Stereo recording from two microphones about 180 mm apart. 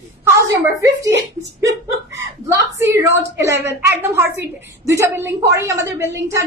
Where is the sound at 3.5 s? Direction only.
70° right (ahead or behind).